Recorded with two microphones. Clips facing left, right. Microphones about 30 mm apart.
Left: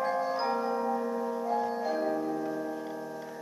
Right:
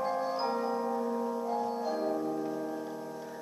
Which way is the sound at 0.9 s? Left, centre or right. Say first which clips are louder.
Left 1 dB; left.